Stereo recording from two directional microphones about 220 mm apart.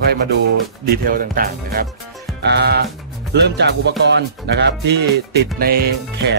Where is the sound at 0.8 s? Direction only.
40° right (ahead or behind).